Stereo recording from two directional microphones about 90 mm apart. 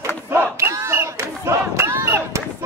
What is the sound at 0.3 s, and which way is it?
Battle cry, 25° right (ahead or behind).